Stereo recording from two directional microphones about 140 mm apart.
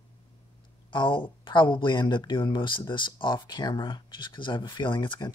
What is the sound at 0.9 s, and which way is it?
Speech, 35° left (ahead or behind).